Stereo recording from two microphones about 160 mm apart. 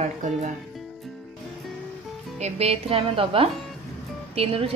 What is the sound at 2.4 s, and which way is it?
A woman's voice, 40° right (ahead or behind).